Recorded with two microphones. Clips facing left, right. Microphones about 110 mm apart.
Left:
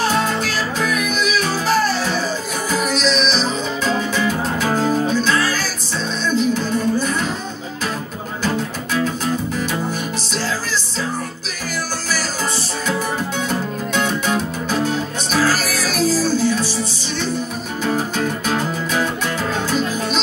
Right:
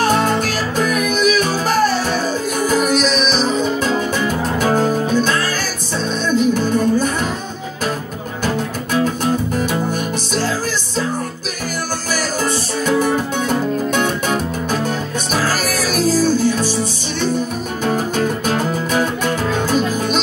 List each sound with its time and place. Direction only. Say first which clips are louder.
0.0 s music: right 3 dB; 50° right (ahead or behind)
8.9 s music: right 3 dB; 50° right (ahead or behind)
13.5 s music: right 5 dB; 50° right (ahead or behind)
17.8 s music: right 2 dB; 50° right (ahead or behind)